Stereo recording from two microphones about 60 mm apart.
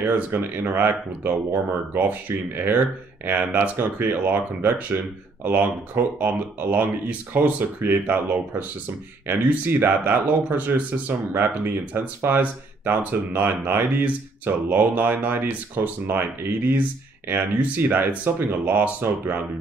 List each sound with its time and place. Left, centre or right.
0.0 s speech: right
5.4 s speech: right